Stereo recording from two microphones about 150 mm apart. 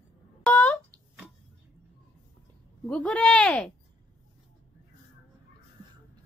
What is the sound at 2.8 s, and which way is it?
Speech, 5° left (ahead or behind).